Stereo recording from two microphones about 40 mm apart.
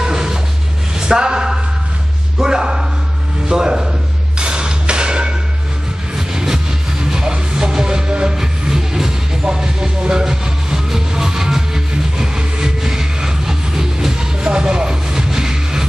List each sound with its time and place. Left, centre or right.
0.0 s a sound: centre
2.3 s a man's voice: centre
4.4 s tap: right
6.1 s music: centre